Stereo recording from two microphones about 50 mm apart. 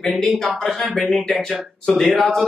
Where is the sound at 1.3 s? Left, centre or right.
Centre.